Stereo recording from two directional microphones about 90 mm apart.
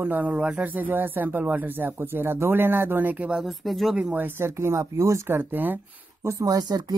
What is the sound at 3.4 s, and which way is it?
Speech, centre (ahead or behind).